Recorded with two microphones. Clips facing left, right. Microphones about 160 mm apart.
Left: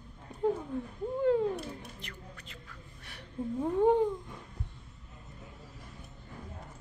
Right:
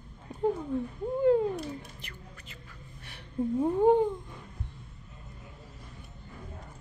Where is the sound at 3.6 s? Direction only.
Centre (ahead or behind).